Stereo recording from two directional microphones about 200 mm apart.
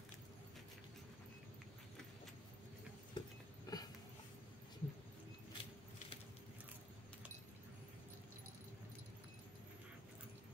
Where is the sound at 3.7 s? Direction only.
20° left (ahead or behind).